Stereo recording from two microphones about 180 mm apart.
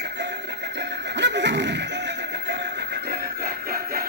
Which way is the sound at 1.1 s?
75° right (ahead or behind).